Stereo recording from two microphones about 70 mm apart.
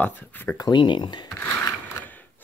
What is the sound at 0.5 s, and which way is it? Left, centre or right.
Speech, left.